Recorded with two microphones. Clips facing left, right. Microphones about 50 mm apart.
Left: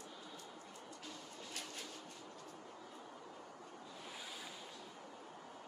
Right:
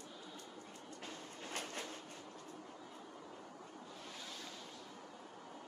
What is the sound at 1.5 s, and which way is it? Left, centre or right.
Train, right.